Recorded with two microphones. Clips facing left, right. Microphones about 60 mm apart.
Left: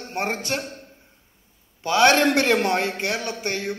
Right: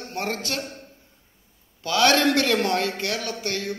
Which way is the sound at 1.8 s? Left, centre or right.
Left.